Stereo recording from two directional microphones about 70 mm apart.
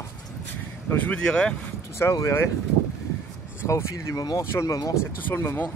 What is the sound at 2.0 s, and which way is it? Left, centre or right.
Speech, left.